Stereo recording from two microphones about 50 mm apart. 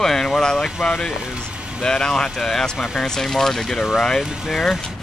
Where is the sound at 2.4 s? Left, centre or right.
Centre.